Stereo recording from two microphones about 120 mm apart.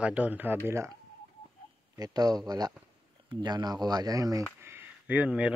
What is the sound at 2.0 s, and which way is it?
Speech, 35° right (ahead or behind).